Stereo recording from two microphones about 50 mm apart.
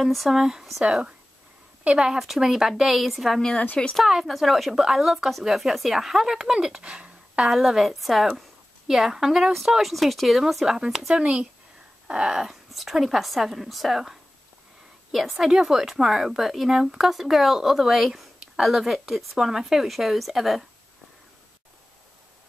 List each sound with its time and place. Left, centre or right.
0.0 s speech: centre
3.8 s speech: centre
4.1 s speech: centre
7.5 s speech: centre
11.1 s speech: right
12.7 s speech: centre
15.1 s speech: centre